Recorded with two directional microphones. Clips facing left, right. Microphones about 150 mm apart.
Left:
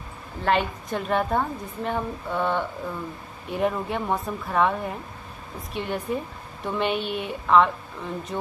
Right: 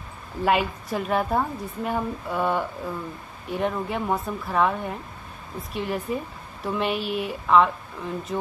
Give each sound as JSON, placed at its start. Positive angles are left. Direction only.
{"t": 0.4, "sound": "a woman's voice", "side_deg": -10}